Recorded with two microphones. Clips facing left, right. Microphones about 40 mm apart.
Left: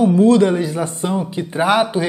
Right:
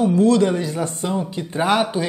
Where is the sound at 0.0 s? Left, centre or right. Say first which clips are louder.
Left 3 dB; centre.